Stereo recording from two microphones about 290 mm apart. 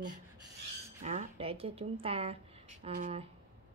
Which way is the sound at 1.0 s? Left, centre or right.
Right.